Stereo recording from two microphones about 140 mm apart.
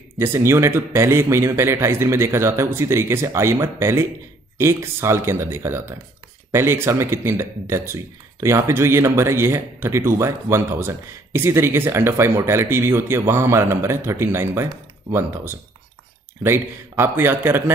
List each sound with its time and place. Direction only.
0.2 s speech: 20° right (ahead or behind)